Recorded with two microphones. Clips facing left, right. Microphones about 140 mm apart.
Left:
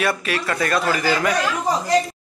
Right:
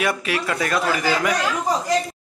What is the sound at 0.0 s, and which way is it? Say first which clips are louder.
Speech: even; 15° right (ahead or behind).